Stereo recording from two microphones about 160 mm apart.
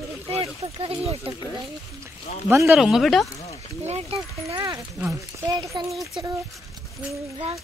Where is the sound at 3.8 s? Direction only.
40° right (ahead or behind).